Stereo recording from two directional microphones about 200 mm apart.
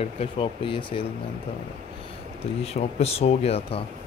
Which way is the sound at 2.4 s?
30° left (ahead or behind).